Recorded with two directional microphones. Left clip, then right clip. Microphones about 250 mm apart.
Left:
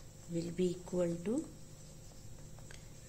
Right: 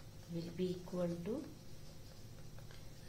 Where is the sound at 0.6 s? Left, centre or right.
Left.